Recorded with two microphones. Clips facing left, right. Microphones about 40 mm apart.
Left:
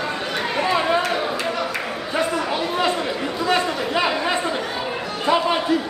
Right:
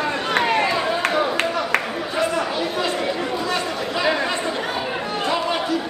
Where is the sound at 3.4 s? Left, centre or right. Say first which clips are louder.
Left 3 dB; left.